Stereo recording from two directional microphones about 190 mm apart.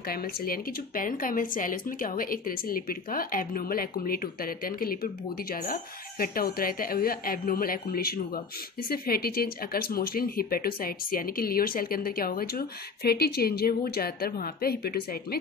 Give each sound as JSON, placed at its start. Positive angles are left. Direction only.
{"t": 0.0, "sound": "speech", "side_deg": 50}